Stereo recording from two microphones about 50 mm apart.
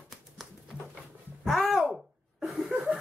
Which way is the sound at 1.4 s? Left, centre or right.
Centre.